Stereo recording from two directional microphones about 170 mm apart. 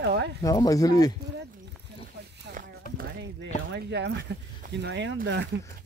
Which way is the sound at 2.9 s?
80° right.